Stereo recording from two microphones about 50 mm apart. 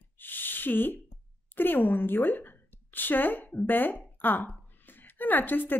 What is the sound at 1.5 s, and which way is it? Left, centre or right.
A woman's voice, left.